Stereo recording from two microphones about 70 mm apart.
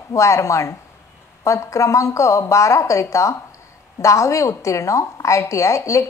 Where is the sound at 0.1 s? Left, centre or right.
Left.